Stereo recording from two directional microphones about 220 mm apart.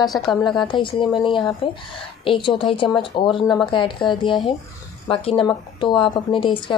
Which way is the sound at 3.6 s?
25° left (ahead or behind).